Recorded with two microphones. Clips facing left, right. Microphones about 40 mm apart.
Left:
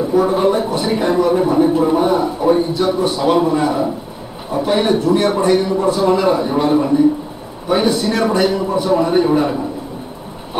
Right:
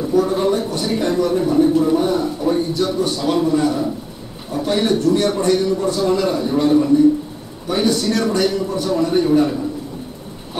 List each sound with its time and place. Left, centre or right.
0.0 s speech: centre